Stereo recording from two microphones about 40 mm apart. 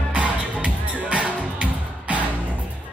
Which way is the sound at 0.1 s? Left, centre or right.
Right.